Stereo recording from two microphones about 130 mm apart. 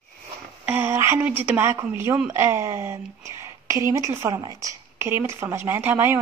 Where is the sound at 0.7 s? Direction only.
15° right (ahead or behind).